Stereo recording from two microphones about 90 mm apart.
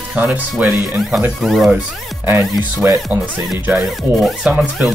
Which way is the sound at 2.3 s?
30° right (ahead or behind).